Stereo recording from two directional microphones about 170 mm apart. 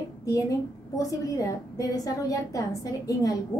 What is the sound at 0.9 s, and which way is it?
A woman's voice, 20° left (ahead or behind).